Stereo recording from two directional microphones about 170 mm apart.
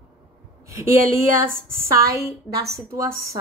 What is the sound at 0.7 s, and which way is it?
Speech, 15° right (ahead or behind).